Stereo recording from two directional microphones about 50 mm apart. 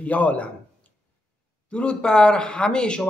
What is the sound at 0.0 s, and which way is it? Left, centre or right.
Speech, left.